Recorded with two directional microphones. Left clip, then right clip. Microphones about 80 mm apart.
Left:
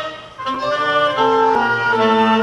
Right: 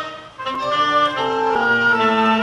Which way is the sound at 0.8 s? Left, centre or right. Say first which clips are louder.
Right 1 dB; centre.